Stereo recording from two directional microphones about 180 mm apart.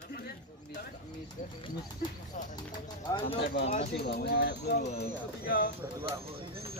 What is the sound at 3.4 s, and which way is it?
Pigeon, 70° left (ahead or behind).